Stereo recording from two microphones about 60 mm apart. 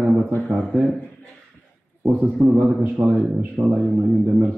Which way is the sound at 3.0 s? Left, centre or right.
Right.